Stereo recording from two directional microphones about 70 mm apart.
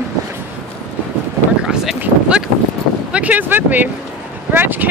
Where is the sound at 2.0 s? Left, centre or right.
Centre.